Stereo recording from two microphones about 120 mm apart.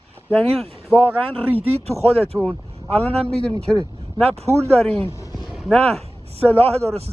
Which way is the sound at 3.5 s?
30° right (ahead or behind).